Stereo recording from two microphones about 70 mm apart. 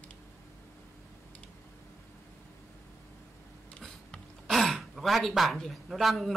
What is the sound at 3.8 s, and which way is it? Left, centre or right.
Speech, centre.